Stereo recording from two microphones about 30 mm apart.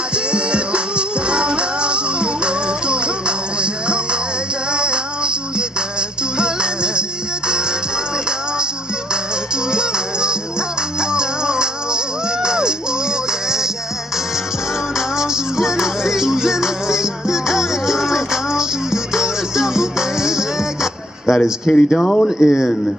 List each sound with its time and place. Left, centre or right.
0.1 s music: right
9.7 s music: right
15.0 s music: centre
21.3 s speech: left